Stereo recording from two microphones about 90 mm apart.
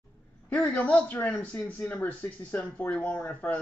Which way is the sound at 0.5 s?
15° left (ahead or behind).